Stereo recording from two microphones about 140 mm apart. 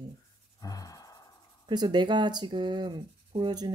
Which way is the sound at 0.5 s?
25° left (ahead or behind).